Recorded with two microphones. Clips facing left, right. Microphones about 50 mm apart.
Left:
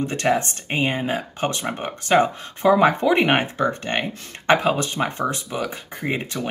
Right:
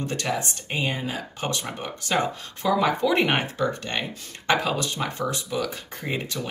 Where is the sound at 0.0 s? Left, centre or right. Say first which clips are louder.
Left 6 dB; left.